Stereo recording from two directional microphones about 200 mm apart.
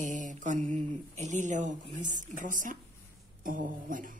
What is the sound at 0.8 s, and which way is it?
Speech, 35° right (ahead or behind).